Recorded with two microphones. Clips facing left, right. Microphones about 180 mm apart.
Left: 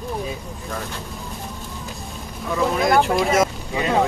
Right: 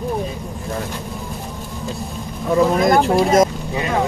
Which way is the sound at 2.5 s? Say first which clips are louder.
Right 4 dB; 40° right (ahead or behind).